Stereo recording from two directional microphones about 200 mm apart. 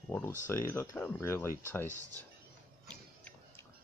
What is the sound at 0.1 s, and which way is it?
Speech, 10° left (ahead or behind).